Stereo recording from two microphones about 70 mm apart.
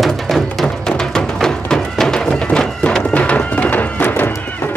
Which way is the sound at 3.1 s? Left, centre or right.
Centre.